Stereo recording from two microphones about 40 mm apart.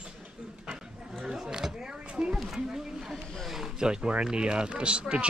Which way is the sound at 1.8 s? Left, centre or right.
Right.